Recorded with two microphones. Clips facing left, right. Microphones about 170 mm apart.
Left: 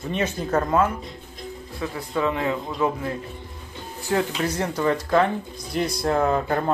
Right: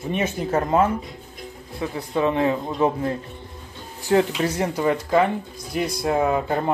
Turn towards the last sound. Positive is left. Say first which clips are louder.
# even
turn(degrees=-15)  # may be behind; listen again after turning